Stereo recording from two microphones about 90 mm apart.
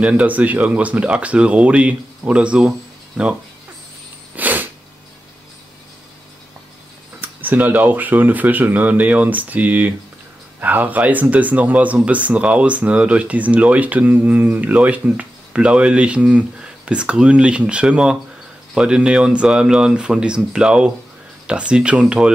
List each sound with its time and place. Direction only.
0.0 s speech: 15° right (ahead or behind)
4.4 s sneeze: 20° right (ahead or behind)
7.2 s speech: 20° right (ahead or behind)